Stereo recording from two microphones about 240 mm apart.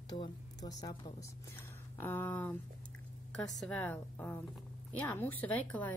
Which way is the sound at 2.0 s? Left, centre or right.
Centre.